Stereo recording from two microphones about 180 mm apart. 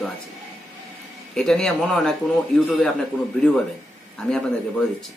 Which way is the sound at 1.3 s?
5° left (ahead or behind).